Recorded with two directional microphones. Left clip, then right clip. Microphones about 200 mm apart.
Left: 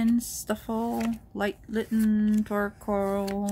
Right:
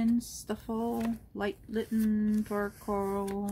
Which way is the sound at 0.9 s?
20° left (ahead or behind).